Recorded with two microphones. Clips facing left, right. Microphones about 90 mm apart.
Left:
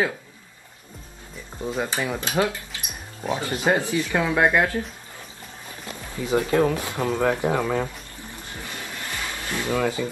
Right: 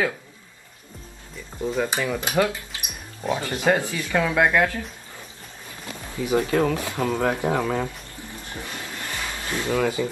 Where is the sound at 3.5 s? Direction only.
20° left (ahead or behind).